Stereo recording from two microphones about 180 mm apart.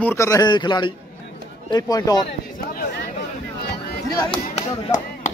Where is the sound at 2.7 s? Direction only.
60° left (ahead or behind).